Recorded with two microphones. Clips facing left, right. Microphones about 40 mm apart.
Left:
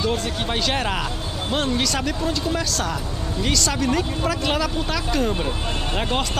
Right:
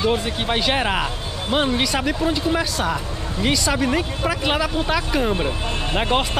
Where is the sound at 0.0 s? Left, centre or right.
Right.